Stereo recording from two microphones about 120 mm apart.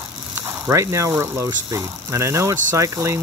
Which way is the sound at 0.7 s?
25° right (ahead or behind).